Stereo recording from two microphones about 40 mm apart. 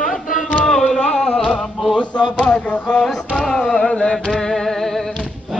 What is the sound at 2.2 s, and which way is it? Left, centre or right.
Speech, left.